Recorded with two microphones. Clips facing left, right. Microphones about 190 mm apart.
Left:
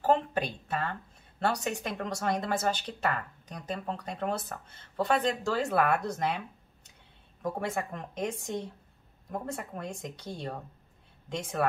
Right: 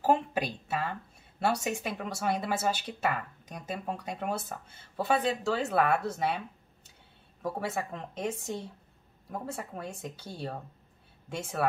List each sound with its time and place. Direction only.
0.0 s a sound: 10° right (ahead or behind)
1.4 s speech: 10° right (ahead or behind)
7.4 s speech: 5° right (ahead or behind)